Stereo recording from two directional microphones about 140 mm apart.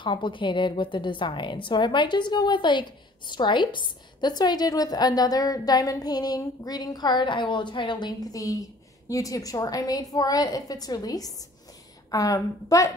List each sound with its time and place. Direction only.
0.0 s a woman's voice: 35° left (ahead or behind)